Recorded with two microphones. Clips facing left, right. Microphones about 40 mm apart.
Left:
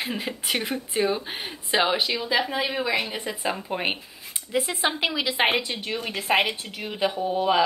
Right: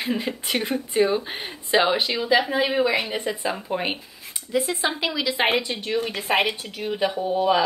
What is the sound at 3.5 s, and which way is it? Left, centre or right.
Speech, centre.